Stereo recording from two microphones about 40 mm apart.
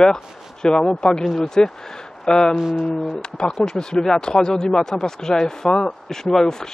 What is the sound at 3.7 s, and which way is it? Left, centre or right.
Speech, centre.